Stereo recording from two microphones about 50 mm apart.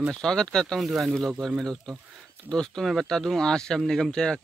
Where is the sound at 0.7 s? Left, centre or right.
Centre.